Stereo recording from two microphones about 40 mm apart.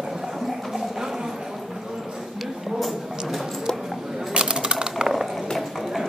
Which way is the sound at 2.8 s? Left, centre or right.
Centre.